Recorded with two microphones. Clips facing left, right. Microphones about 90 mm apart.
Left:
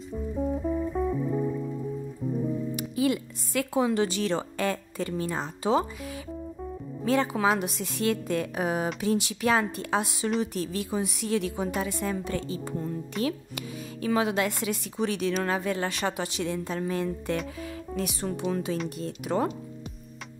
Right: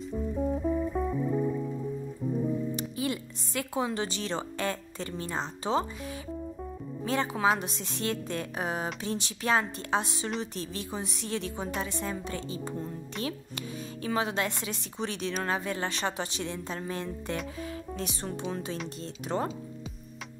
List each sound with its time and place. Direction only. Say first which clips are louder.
0.5 s music: left 1 dB; centre (ahead or behind)
2.7 s music: left 5 dB; 30° right (ahead or behind)
3.8 s speech: left 6 dB; 25° right (ahead or behind)
7.1 s a woman's voice: left 3 dB; 25° right (ahead or behind)